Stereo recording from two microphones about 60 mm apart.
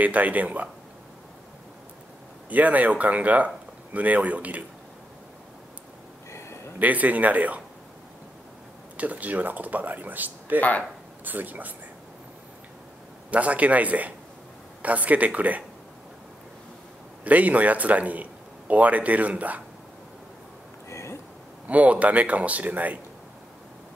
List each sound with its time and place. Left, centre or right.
0.0 s a man's voice: right
2.5 s a man's voice: right
6.8 s a man's voice: right
8.9 s a man's voice: right
13.3 s a man's voice: right
17.2 s a man's voice: right
20.9 s a sound: left
21.6 s a man's voice: right